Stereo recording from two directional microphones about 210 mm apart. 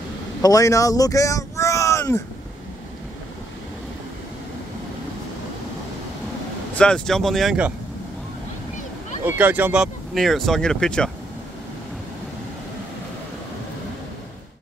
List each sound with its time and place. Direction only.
0.4 s speech: 15° left (ahead or behind)
6.7 s speech: 5° left (ahead or behind)
9.2 s speech: 10° right (ahead or behind)